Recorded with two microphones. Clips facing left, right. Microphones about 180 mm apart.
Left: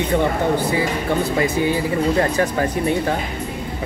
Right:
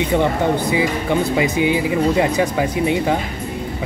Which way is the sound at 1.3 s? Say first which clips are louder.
Right 2 dB; 15° right (ahead or behind).